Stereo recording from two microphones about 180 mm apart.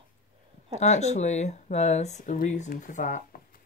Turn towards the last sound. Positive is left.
turn(degrees=45)  # may be behind; listen again after turning